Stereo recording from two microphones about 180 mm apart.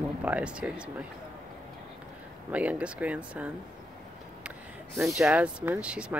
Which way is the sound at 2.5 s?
10° right (ahead or behind).